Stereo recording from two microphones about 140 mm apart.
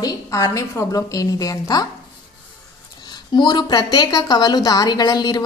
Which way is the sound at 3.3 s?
30° left (ahead or behind).